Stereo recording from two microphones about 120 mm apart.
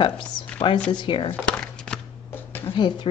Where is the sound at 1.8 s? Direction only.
15° left (ahead or behind).